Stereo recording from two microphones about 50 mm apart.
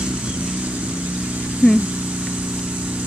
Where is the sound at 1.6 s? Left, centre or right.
Right.